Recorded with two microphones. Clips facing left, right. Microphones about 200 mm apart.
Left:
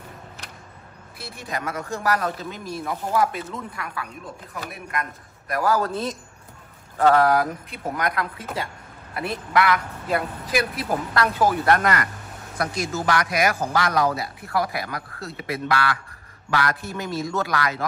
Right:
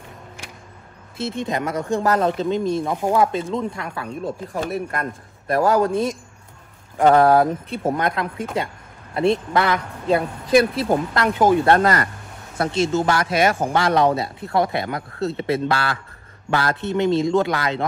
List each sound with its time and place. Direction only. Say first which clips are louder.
1.1 s speech: right 9 dB; 20° right (ahead or behind)
7.0 s speech: right 4 dB; 25° right (ahead or behind)